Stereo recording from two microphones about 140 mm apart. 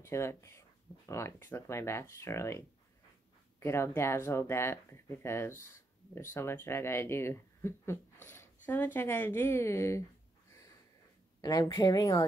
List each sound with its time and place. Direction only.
0.0 s speech: 20° left (ahead or behind)
11.4 s speech: 30° left (ahead or behind)